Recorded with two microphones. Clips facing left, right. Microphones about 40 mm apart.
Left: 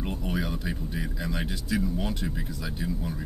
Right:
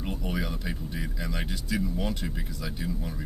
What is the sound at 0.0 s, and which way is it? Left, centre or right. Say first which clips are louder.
Speech: left 1 dB; centre.